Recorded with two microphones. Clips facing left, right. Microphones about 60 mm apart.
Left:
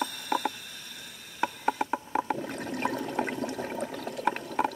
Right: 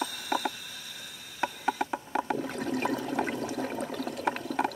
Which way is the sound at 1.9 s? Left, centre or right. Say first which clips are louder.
Left 1 dB; centre.